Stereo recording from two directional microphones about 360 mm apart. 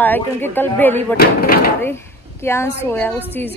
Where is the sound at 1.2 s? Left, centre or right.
Left.